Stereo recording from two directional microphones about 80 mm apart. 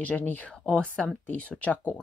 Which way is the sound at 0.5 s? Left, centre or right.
Centre.